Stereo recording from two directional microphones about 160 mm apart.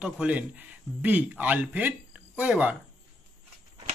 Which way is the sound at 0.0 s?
10° right (ahead or behind).